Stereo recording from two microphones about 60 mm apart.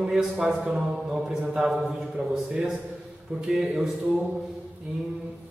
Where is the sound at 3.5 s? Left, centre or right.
Centre.